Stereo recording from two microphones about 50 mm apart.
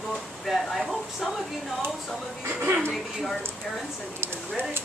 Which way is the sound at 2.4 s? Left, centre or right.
Right.